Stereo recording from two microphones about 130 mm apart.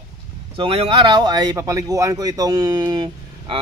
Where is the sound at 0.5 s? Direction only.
45° right (ahead or behind).